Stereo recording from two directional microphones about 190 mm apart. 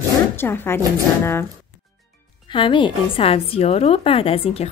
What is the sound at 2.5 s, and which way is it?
A woman's voice, 25° left (ahead or behind).